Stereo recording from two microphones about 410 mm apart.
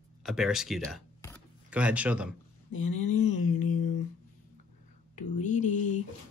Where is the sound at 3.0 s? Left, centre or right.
Left.